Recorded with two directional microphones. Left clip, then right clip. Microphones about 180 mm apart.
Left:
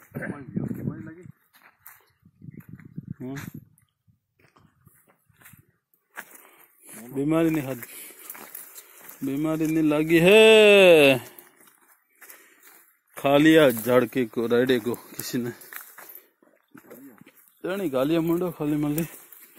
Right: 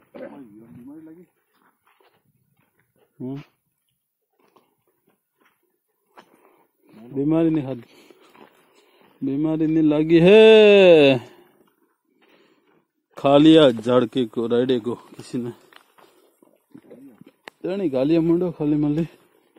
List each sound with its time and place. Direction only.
7.2 s speech: 15° right (ahead or behind)
8.9 s speech: 15° right (ahead or behind)
13.1 s speech: 20° right (ahead or behind)
14.3 s speech: 10° left (ahead or behind)
16.7 s a sound: 15° left (ahead or behind)
17.2 s speech: 25° right (ahead or behind)